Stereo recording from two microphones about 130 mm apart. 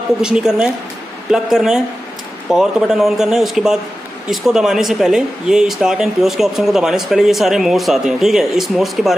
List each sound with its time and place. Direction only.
0.2 s speech: 5° right (ahead or behind)